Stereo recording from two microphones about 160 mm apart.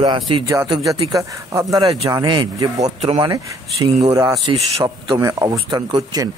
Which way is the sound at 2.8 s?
45° right (ahead or behind).